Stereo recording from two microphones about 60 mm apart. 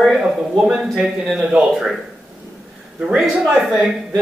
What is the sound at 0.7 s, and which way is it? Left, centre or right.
Speech, centre.